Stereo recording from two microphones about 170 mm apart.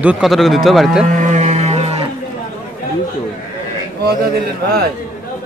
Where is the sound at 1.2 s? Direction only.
45° right (ahead or behind).